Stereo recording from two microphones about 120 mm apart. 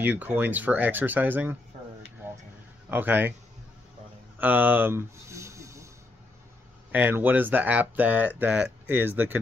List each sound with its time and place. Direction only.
0.0 s speech: 15° right (ahead or behind)
2.9 s speech: 15° right (ahead or behind)
4.4 s a sound: 15° right (ahead or behind)
6.9 s speech: 15° right (ahead or behind)